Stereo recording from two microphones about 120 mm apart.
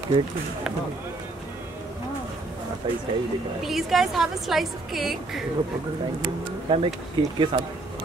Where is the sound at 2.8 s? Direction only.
40° right (ahead or behind).